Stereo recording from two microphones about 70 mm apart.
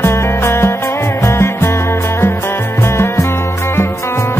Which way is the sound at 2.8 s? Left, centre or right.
Left.